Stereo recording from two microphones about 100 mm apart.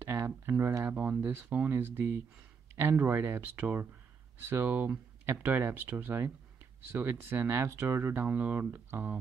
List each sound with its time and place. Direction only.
0.0 s speech: 25° right (ahead or behind)